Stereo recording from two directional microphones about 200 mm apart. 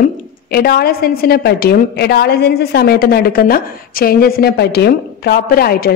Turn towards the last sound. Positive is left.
turn(degrees=50)  # may be behind; listen again after turning